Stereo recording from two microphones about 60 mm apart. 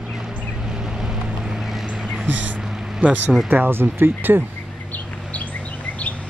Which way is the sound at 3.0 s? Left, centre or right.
Right.